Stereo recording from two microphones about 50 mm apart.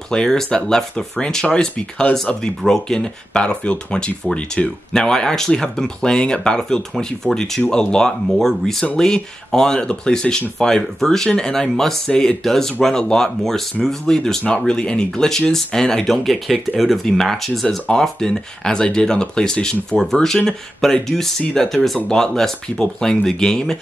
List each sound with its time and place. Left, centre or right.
0.1 s speech: centre
1.8 s speech: left
2.6 s speech: centre